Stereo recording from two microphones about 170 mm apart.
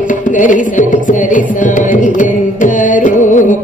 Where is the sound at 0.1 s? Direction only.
50° left (ahead or behind).